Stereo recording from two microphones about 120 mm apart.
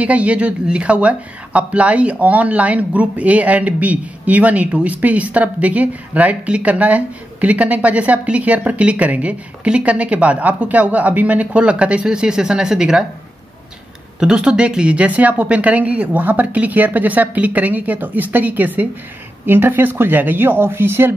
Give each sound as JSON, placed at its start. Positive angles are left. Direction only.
{"t": 0.0, "sound": "speech", "side_deg": -10}
{"t": 14.2, "sound": "speech", "side_deg": -5}